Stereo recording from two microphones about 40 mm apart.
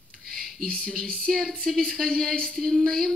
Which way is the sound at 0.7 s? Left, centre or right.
Left.